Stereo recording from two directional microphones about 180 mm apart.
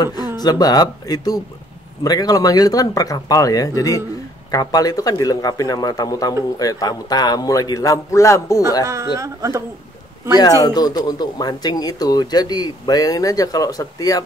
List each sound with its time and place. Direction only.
0.4 s speech: 20° left (ahead or behind)
8.8 s speech: 15° right (ahead or behind)
10.6 s speech: 20° left (ahead or behind)